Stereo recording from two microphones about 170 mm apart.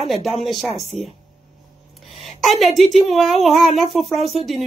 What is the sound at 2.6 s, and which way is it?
Speech, centre (ahead or behind).